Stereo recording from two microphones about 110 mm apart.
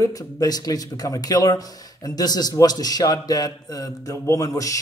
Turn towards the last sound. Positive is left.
turn(degrees=30)  # may be behind; listen again after turning